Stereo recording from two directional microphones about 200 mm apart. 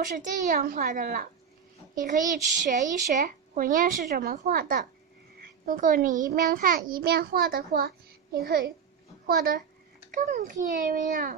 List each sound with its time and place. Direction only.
0.0 s a child's voice: 40° right (ahead or behind)